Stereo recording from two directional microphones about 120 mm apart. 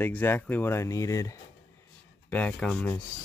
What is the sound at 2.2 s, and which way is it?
Speech, 10° left (ahead or behind).